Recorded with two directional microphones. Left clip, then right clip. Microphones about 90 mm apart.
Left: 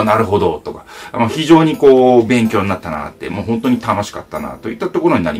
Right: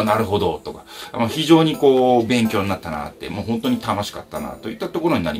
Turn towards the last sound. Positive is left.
turn(degrees=-25)  # may be behind; listen again after turning